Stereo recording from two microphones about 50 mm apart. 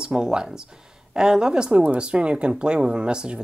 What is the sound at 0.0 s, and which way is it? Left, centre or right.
Speech, centre.